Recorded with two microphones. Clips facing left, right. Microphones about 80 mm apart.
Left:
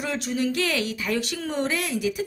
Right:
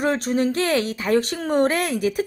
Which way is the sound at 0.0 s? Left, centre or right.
Right.